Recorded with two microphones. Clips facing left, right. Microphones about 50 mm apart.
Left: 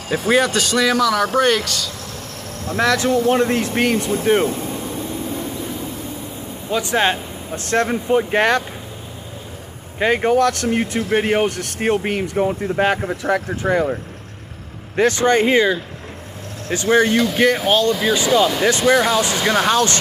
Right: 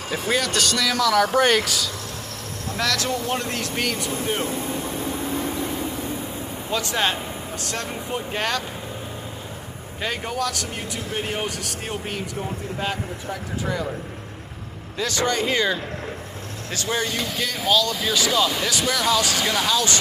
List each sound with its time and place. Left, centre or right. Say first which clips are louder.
0.1 s speech: left 7 dB; left
0.5 s speech: left 5 dB; centre
1.0 s speech: left 2 dB; centre
2.7 s speech: left 8 dB; left
3.9 s speech: left 9 dB; left
6.8 s speech: left 6 dB; left
9.9 s speech: left 11 dB; left
15.0 s speech: left 8 dB; left
16.6 s speech: left 10 dB; left
18.6 s speech: left 9 dB; left